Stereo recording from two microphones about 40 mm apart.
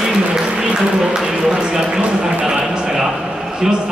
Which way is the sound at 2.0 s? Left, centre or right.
Right.